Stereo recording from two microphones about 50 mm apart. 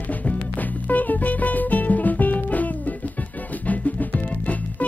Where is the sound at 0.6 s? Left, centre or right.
Left.